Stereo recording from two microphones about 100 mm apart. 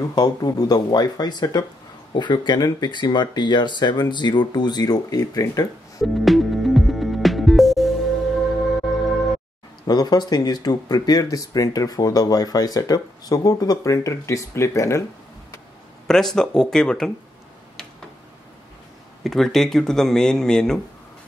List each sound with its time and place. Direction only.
0.0 s speech: 40° left (ahead or behind)
6.1 s music: centre (ahead or behind)
9.8 s speech: 45° left (ahead or behind)
16.1 s speech: 5° left (ahead or behind)
19.2 s speech: 5° left (ahead or behind)